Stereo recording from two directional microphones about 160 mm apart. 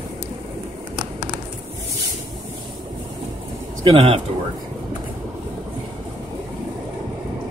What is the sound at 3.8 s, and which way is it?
Speech, 35° right (ahead or behind).